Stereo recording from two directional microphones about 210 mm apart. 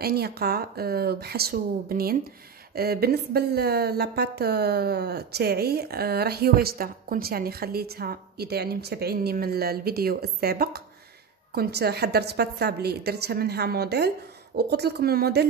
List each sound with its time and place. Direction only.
0.0 s speech: 50° right (ahead or behind)